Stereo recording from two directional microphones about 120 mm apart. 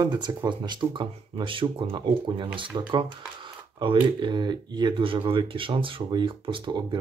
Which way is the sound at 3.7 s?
40° right (ahead or behind).